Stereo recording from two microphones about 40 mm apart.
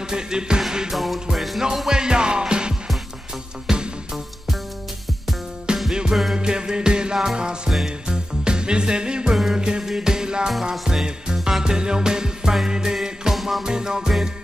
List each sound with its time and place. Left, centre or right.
0.1 s music: centre
1.9 s music: centre
5.7 s music: right; by 13.7 s centre
13.7 s music: centre